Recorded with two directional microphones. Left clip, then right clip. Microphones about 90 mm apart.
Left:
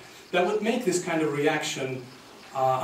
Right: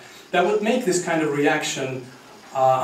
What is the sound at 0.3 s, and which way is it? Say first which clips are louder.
Speech: right 5 dB; 15° right (ahead or behind).